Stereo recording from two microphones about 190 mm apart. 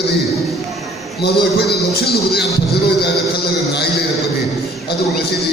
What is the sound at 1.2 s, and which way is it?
Speech, 55° left (ahead or behind).